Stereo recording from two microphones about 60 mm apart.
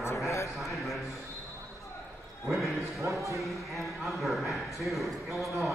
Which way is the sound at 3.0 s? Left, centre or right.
Right.